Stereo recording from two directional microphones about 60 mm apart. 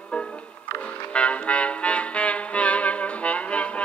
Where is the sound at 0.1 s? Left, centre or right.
Left.